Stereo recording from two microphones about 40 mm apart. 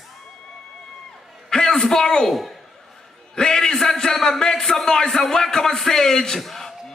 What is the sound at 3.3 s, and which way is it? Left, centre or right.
Speech, centre.